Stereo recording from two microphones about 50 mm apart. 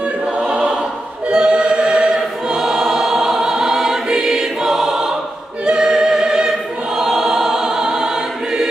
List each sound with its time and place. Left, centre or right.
0.5 s choir: right